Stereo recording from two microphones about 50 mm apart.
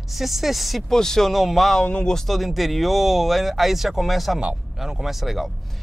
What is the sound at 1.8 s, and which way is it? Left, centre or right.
Speech, centre.